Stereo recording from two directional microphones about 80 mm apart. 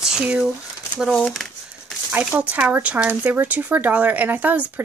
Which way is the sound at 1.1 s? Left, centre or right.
Centre.